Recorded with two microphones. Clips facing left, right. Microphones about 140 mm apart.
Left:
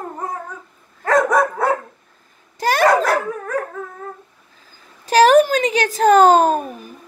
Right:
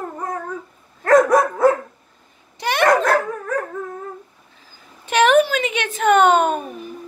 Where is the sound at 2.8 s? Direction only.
5° left (ahead or behind).